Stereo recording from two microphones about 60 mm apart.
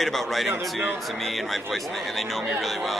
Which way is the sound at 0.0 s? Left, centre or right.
Centre.